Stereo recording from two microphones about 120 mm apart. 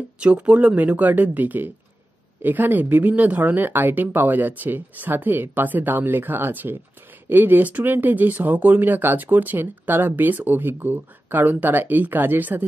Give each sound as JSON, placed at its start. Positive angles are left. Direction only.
{"t": 0.2, "sound": "speech", "side_deg": -10}